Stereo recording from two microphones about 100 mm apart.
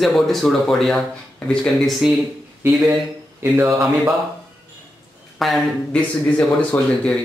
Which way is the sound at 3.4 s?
25° right (ahead or behind).